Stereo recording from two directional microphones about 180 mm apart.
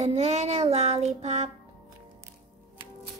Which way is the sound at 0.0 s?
40° right (ahead or behind).